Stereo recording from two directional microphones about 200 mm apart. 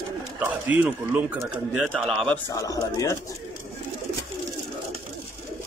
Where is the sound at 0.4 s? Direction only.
5° right (ahead or behind).